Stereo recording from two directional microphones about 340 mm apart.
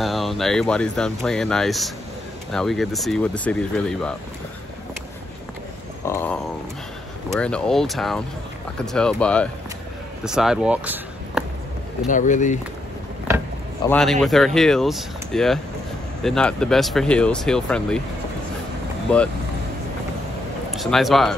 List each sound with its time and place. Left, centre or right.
0.0 s speech: centre
6.0 s speech: centre
12.1 s speech: left
13.8 s speech: centre
19.1 s speech: centre
20.7 s speech: centre